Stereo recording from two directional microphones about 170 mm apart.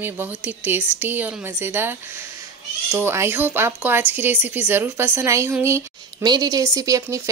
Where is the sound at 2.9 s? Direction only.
15° right (ahead or behind).